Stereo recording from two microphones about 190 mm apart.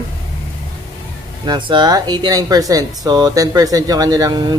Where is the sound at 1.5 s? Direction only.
25° right (ahead or behind).